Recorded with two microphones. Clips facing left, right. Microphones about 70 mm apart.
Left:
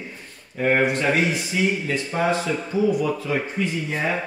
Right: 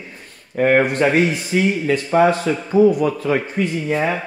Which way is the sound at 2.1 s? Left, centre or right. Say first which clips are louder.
Right 10 dB; right.